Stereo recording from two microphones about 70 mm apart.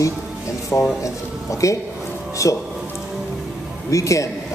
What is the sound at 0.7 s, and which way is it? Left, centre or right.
Speech, left.